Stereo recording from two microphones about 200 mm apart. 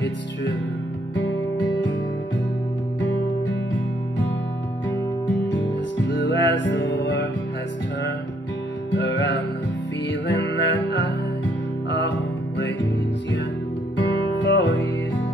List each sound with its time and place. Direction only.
1.1 s music: 70° left (ahead or behind)
5.5 s music: 70° left (ahead or behind)
8.9 s music: 70° left (ahead or behind)
14.4 s music: 70° left (ahead or behind)